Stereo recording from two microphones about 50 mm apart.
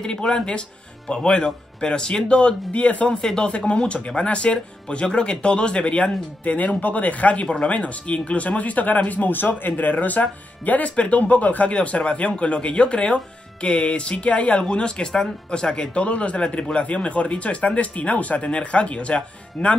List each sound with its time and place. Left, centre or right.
0.0 s speech: centre
3.2 s speech: centre
3.4 s speech: left